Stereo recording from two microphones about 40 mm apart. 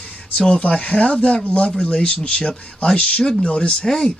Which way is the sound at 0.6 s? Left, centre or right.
Left.